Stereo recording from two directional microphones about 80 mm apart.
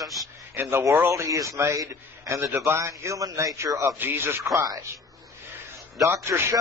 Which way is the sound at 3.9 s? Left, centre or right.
Right.